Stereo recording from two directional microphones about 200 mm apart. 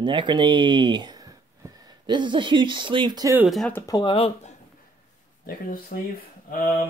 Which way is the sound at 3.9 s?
25° left (ahead or behind).